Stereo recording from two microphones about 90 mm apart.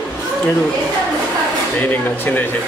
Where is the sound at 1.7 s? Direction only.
20° left (ahead or behind).